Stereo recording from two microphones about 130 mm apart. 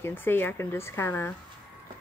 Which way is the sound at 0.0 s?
15° left (ahead or behind).